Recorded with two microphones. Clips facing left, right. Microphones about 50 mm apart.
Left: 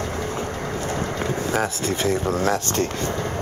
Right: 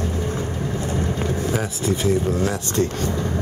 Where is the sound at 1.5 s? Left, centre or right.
Left.